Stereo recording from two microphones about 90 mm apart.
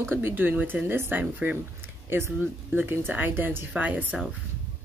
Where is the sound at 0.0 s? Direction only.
25° right (ahead or behind).